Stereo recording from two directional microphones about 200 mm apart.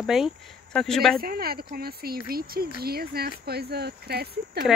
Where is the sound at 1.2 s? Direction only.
50° right (ahead or behind).